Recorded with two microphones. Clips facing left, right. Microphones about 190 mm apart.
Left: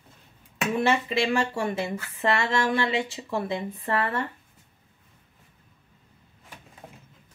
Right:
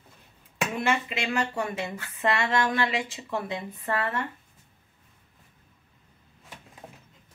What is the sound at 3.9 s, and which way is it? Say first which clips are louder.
Speech: left 2 dB; 30° left (ahead or behind).